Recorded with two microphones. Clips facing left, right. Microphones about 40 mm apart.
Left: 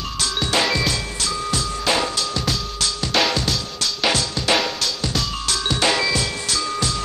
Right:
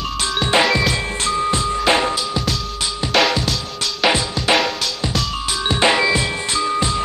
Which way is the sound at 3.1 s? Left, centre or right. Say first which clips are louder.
Right 4 dB; centre.